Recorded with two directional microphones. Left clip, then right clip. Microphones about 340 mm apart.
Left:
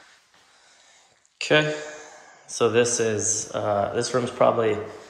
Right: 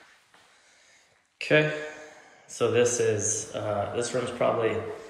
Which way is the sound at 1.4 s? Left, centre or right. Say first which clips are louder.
Left 2 dB; centre.